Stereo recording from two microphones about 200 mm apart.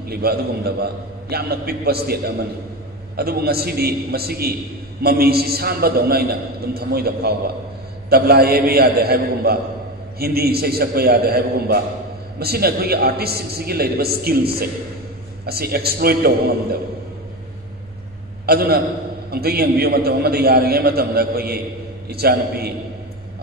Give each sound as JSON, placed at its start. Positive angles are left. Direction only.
{"t": 0.1, "sound": "a man's voice", "side_deg": -50}
{"t": 18.4, "sound": "a man's voice", "side_deg": -50}